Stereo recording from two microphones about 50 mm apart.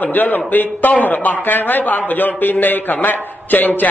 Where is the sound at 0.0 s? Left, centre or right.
Left.